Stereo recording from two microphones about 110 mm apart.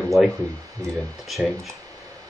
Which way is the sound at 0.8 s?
30° right (ahead or behind).